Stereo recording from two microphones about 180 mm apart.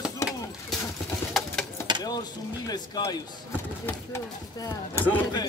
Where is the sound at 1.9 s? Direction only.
25° right (ahead or behind).